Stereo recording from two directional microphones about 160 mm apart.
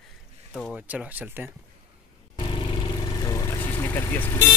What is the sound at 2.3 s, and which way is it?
Vehicle, 30° left (ahead or behind).